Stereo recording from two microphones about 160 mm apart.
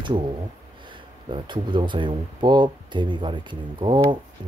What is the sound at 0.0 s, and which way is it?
Speech, 30° right (ahead or behind).